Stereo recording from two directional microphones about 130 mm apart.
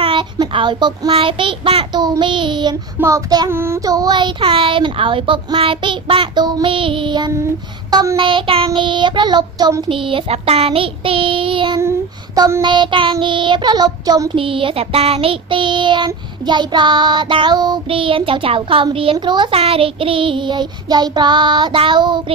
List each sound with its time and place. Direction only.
0.0 s child singing: 40° right (ahead or behind)
3.0 s child singing: 25° right (ahead or behind)
7.9 s child singing: 25° right (ahead or behind)
8.2 s child singing: 40° right (ahead or behind)
9.8 s child singing: 40° right (ahead or behind)
12.4 s child singing: 20° right (ahead or behind)
12.6 s child singing: 35° right (ahead or behind)
14.3 s child singing: 40° right (ahead or behind)
19.5 s child singing: 50° right (ahead or behind)